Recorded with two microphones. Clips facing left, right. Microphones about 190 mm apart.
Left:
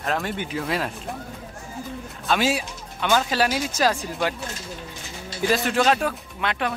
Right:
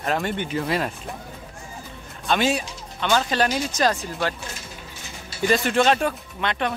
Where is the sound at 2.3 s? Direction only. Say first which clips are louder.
Right 1 dB; 5° left (ahead or behind).